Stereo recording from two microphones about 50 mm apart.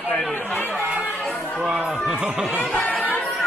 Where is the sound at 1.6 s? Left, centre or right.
Centre.